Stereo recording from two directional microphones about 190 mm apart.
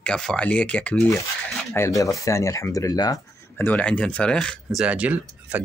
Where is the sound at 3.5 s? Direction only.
10° left (ahead or behind).